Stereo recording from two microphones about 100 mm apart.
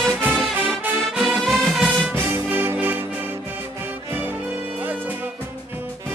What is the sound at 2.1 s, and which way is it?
Music, 20° right (ahead or behind).